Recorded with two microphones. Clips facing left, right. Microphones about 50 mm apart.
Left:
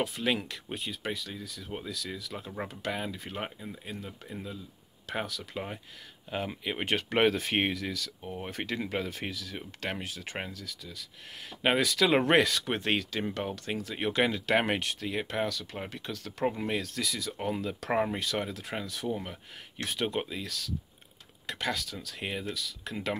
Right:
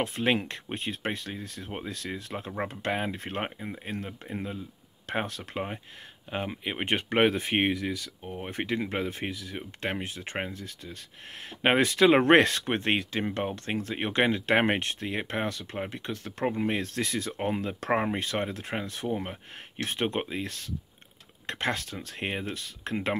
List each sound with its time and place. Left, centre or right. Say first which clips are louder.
0.0 s speech: right 3 dB; right
6.3 s speech: right 1 dB; right
16.8 s speech: right 3 dB; right
19.0 s speech: right 2 dB; right
19.8 s speech: right 2 dB; right